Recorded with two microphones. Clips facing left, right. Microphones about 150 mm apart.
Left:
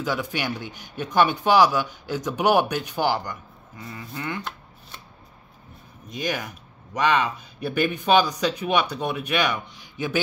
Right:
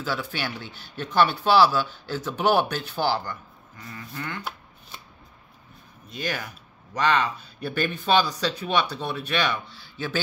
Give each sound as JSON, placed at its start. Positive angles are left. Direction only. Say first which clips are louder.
{"t": 0.0, "sound": "speech", "louder": "left 3 dB", "side_deg": 15}
{"t": 6.1, "sound": "speech", "louder": "left 3 dB", "side_deg": 15}